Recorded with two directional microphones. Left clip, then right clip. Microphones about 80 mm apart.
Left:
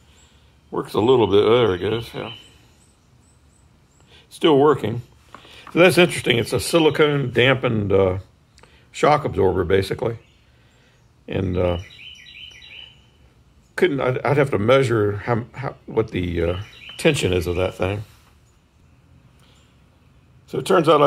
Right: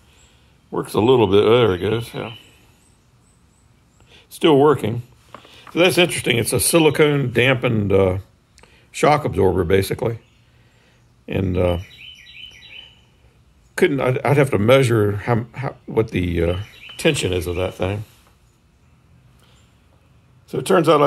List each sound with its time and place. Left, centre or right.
0.8 s speech: centre
4.1 s speech: centre
5.5 s a sound: left
6.1 s speech: centre
11.2 s speech: centre
13.7 s a man's voice: centre
16.6 s a sound: centre
17.1 s speech: centre
17.6 s speech: centre
20.4 s speech: centre